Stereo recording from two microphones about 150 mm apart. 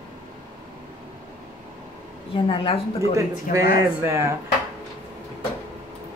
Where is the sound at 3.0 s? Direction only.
20° right (ahead or behind).